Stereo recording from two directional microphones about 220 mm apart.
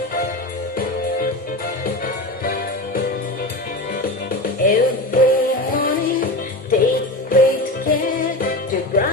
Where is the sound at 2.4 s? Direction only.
40° left (ahead or behind).